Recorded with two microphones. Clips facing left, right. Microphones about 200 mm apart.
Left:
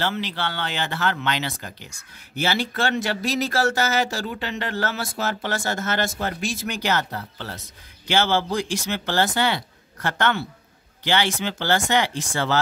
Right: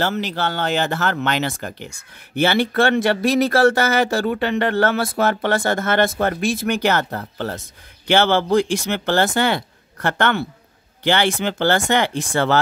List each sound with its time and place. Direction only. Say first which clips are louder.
0.0 s speech: right 5 dB; 45° right (ahead or behind)
8.1 s speech: right 6 dB; 60° right (ahead or behind)